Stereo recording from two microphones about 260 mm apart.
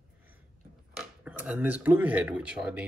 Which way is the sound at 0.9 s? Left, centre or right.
Centre.